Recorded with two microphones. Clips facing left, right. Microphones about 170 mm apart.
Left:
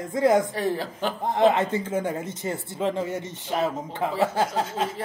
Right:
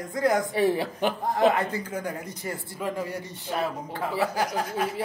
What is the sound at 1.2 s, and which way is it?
Speech, 20° left (ahead or behind).